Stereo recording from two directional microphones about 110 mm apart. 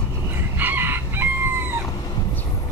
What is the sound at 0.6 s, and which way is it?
Chicken, 20° right (ahead or behind).